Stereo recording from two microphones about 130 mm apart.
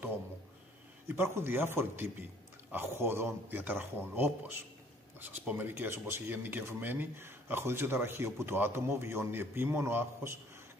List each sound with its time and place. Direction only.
1.0 s a man's voice: 20° right (ahead or behind)